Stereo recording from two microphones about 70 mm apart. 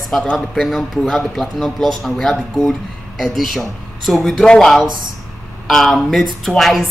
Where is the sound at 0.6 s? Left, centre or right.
Centre.